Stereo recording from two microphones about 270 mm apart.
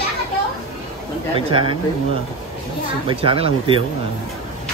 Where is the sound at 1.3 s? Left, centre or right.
Centre.